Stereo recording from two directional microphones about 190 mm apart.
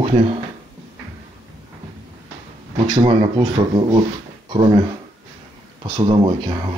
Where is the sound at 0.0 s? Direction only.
30° right (ahead or behind).